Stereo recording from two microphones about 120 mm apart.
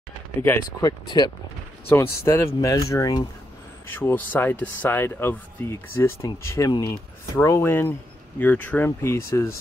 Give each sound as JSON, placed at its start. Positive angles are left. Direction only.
{"t": 0.4, "sound": "speech", "side_deg": 20}
{"t": 0.8, "sound": "speech", "side_deg": 35}
{"t": 1.9, "sound": "speech", "side_deg": 25}
{"t": 3.8, "sound": "speech", "side_deg": 15}